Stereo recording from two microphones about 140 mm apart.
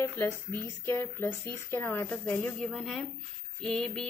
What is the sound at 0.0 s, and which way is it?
A woman's voice, 15° left (ahead or behind).